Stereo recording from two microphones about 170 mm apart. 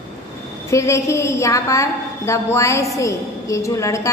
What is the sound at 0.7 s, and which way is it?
A woman's voice, 15° left (ahead or behind).